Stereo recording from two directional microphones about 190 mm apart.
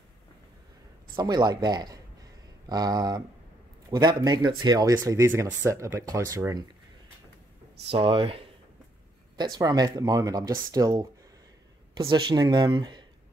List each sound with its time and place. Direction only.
1.1 s speech: 20° right (ahead or behind)
7.9 s speech: 30° right (ahead or behind)
9.4 s speech: 20° right (ahead or behind)